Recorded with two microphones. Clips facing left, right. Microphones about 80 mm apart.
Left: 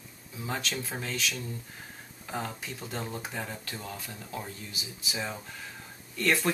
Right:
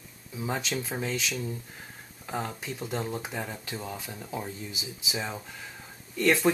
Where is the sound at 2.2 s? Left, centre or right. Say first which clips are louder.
Right 2 dB; centre.